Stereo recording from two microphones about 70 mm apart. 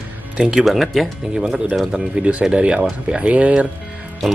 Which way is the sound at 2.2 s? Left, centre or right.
Centre.